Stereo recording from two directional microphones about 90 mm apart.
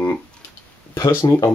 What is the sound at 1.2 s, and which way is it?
Speech, 45° left (ahead or behind).